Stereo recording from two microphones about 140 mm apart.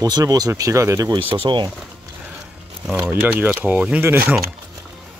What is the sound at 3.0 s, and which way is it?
Speech, 15° right (ahead or behind).